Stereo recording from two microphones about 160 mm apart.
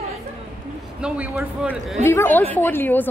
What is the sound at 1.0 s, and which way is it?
A man's voice, 10° right (ahead or behind).